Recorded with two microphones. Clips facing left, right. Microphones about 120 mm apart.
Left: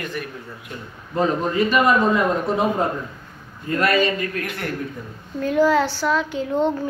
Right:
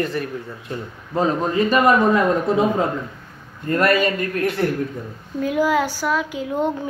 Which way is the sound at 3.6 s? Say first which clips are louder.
Right 2 dB; 50° right (ahead or behind).